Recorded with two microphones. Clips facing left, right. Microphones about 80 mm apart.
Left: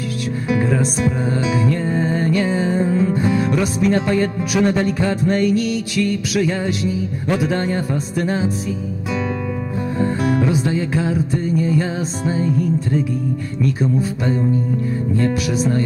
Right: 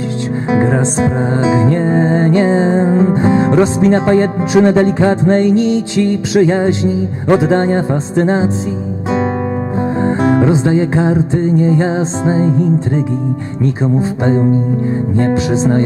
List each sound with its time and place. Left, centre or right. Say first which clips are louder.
0.5 s music: right 5 dB; right
9.9 s music: right 6 dB; right